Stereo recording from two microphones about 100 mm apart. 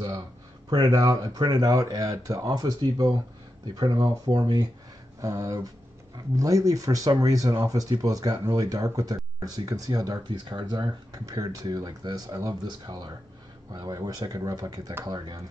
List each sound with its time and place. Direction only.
0.7 s speech: 40° right (ahead or behind)
5.2 s speech: 35° right (ahead or behind)
12.6 s speech: 45° right (ahead or behind)